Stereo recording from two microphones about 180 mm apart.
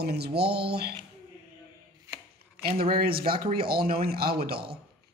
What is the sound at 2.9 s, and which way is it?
Speech, 55° right (ahead or behind).